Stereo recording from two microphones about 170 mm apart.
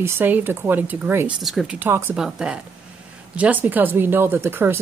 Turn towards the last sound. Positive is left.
turn(degrees=-10)  # may be behind; listen again after turning